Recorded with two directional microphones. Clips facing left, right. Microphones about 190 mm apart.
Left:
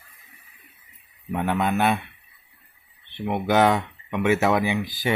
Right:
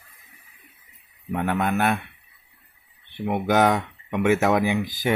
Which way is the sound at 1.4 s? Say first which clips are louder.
Left 1 dB; 5° right (ahead or behind).